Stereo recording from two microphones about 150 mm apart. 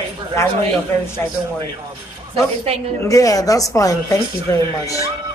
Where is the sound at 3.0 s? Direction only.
20° left (ahead or behind).